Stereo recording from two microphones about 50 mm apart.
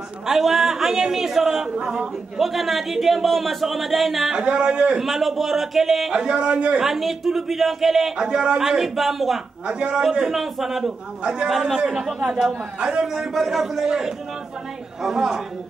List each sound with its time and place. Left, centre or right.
0.3 s a man's voice: centre
1.8 s a man's voice: centre
2.3 s a man's voice: centre
4.3 s a man's voice: centre
5.0 s a man's voice: centre
6.1 s a man's voice: centre
6.8 s a man's voice: centre
8.2 s a man's voice: centre
9.7 s a man's voice: centre
10.0 s a man's voice: centre
11.2 s a man's voice: centre